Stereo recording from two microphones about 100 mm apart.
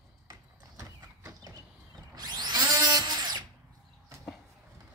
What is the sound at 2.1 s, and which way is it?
Drill, 45° right (ahead or behind).